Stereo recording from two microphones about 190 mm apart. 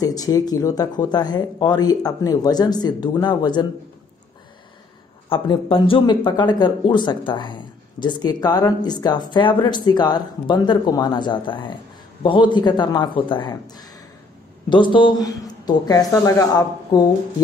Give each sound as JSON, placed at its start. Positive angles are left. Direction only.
{"t": 0.0, "sound": "speech", "side_deg": 20}
{"t": 5.3, "sound": "speech", "side_deg": 25}